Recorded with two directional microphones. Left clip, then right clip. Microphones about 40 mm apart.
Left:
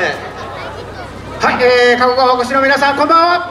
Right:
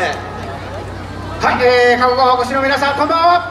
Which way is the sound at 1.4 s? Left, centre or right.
Left.